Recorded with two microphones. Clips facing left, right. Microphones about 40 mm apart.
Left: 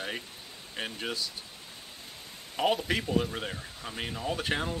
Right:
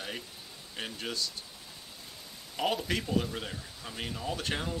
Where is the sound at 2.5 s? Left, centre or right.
Centre.